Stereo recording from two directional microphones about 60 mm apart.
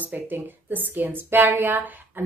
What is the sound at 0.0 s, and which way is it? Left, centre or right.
Speech, right.